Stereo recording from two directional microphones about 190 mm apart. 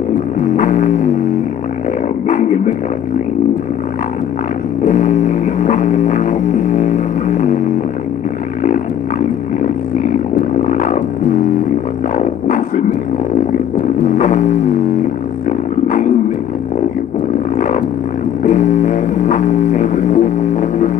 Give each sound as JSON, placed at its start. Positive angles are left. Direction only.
{"t": 0.6, "sound": "music", "side_deg": 40}
{"t": 2.2, "sound": "music", "side_deg": 40}
{"t": 4.8, "sound": "music", "side_deg": 40}
{"t": 10.6, "sound": "a sound", "side_deg": 45}
{"t": 12.2, "sound": "music", "side_deg": 40}
{"t": 17.6, "sound": "a sound", "side_deg": 45}
{"t": 18.4, "sound": "music", "side_deg": 45}